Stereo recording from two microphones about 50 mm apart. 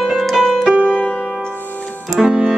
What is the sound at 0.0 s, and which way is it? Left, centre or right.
Music, centre.